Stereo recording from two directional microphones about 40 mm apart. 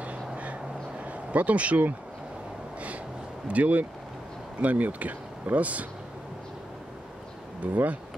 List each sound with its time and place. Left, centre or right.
1.0 s speech: right
3.4 s speech: right
7.6 s speech: right